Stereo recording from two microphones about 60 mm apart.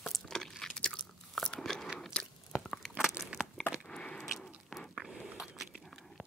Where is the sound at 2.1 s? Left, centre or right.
Centre.